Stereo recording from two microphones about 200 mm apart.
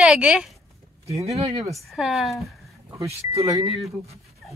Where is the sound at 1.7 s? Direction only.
Centre (ahead or behind).